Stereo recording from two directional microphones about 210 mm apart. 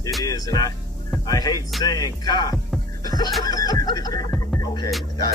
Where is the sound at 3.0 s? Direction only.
20° left (ahead or behind).